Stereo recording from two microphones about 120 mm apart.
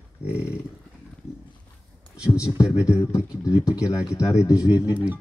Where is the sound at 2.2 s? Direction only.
25° left (ahead or behind).